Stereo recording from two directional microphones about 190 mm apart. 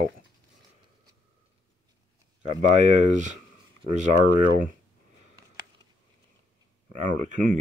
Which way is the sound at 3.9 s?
40° right (ahead or behind).